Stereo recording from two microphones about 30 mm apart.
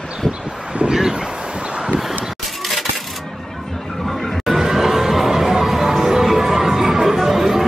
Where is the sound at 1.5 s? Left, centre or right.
Right.